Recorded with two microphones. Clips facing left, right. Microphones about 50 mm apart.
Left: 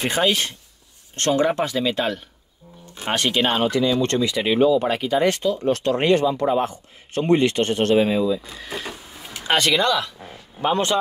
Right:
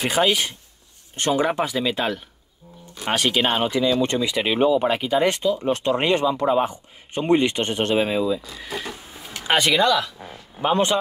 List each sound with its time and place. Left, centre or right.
0.0 s speech: centre
6.6 s speech: centre
8.7 s printer: centre
9.4 s speech: centre